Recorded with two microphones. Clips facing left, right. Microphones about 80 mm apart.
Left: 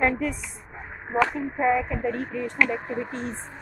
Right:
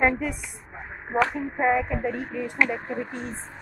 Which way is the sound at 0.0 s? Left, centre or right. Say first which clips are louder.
Right 1 dB; centre.